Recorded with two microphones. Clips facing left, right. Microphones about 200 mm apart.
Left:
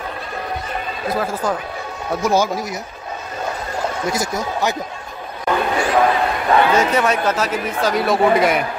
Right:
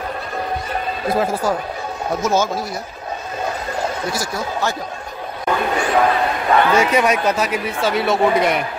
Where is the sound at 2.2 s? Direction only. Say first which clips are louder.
Left 2 dB; 15° left (ahead or behind).